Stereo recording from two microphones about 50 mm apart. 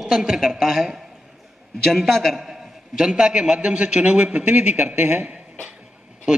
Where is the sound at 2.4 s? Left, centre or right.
Centre.